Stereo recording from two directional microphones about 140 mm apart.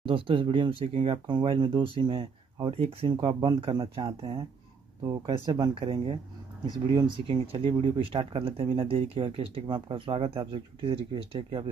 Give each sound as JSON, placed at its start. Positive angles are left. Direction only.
{"t": 0.0, "sound": "speech", "side_deg": -40}